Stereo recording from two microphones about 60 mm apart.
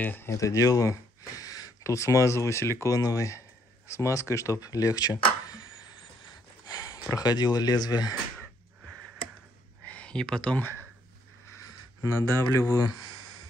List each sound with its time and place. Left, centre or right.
0.0 s speech: left
0.3 s speech: left
2.9 s speech: left
6.6 s a sound: left
7.2 s speech: left
9.8 s a sound: centre
12.1 s speech: left